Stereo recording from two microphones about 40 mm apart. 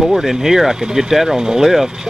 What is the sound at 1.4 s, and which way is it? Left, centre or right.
Speech, centre.